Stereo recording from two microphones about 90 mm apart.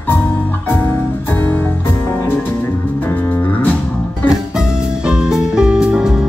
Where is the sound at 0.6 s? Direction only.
20° left (ahead or behind).